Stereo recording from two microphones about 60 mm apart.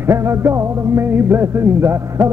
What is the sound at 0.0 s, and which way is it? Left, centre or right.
Music, right.